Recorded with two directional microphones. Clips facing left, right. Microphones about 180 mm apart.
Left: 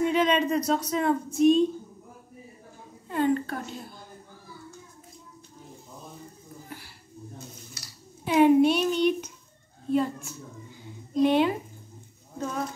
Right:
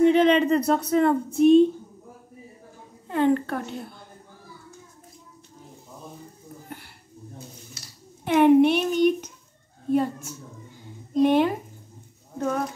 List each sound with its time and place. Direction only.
0.0 s speech: 60° right (ahead or behind)
3.1 s a child's voice: 60° right (ahead or behind)
8.3 s a child's voice: 65° right (ahead or behind)